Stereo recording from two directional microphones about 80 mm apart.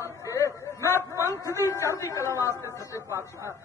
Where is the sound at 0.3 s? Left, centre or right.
Left.